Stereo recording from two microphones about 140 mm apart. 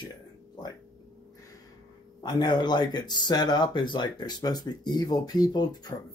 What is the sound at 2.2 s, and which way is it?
Speech, 30° left (ahead or behind).